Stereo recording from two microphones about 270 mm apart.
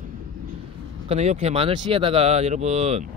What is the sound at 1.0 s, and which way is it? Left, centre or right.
Speech, right.